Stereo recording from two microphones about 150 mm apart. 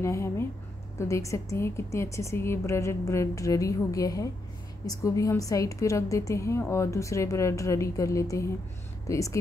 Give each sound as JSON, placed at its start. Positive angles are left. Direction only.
{"t": 0.0, "sound": "a woman's voice", "side_deg": 20}